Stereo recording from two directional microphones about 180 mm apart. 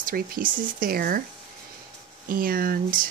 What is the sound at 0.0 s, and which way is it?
Speech, 55° right (ahead or behind).